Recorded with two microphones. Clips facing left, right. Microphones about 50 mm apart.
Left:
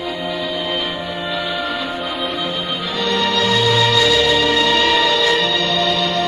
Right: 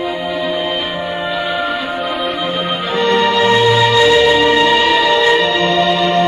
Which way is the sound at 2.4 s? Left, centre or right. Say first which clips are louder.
Right 4 dB; right.